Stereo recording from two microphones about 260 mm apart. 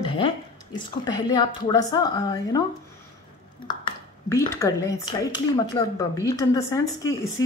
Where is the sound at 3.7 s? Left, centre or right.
Centre.